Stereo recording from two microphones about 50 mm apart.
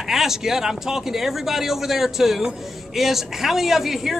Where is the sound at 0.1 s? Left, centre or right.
Centre.